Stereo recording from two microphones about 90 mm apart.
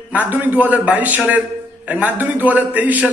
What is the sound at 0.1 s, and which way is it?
A man's voice, 20° right (ahead or behind).